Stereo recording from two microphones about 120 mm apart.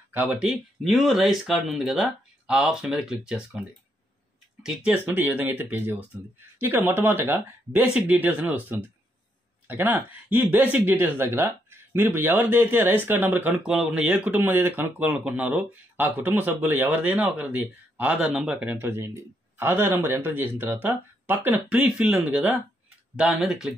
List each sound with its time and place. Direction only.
0.1 s speech: 10° right (ahead or behind)
4.6 s speech: 10° right (ahead or behind)
13.7 s speech: 5° right (ahead or behind)